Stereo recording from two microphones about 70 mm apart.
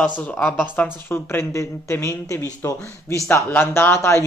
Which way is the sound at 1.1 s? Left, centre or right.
Left.